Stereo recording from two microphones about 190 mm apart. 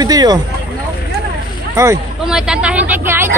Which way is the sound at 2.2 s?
5° right (ahead or behind).